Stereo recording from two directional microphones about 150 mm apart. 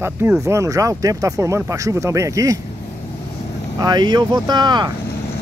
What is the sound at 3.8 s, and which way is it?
Speech, 30° right (ahead or behind).